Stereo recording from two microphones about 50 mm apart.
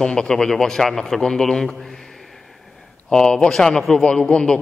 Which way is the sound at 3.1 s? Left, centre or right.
Centre.